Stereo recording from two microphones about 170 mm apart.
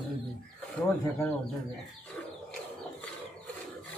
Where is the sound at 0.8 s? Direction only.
10° left (ahead or behind).